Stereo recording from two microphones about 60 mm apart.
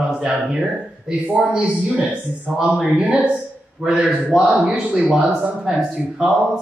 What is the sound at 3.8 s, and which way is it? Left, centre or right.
Speech, centre.